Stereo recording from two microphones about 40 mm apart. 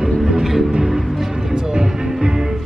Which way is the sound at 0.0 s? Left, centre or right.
Centre.